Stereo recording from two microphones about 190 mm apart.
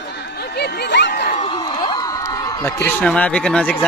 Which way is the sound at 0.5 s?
60° left (ahead or behind).